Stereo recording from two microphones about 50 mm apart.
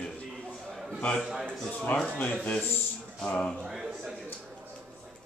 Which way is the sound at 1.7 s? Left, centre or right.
Left.